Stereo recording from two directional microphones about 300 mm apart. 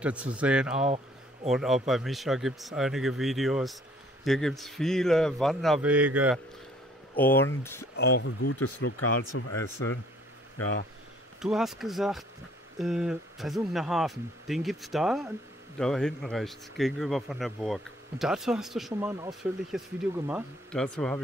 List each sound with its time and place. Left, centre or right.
0.0 s speech: centre
0.8 s a sound: right
1.5 s speech: centre
7.2 s speech: centre
8.1 s speech: left
11.4 s speech: centre